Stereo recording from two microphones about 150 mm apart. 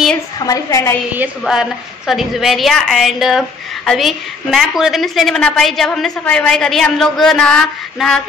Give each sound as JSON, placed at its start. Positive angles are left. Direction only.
{"t": 0.5, "sound": "a woman's voice", "side_deg": 25}
{"t": 1.4, "sound": "a woman's voice", "side_deg": 0}